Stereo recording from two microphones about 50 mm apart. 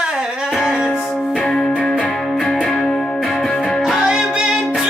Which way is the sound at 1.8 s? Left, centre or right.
Left.